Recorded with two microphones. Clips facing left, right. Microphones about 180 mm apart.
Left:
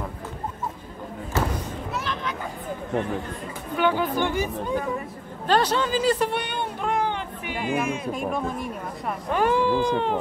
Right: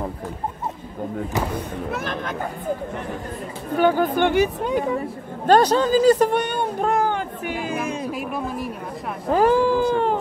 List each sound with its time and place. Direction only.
1.5 s a sound: 55° right (ahead or behind)
3.7 s speech: 45° right (ahead or behind); by 4.7 s 70° right (ahead or behind)
5.5 s speech: 40° right (ahead or behind)
8.1 s speech: 5° right (ahead or behind)
9.3 s speech: 35° right (ahead or behind)